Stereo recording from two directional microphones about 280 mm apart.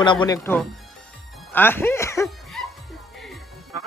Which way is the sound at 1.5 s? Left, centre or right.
Centre.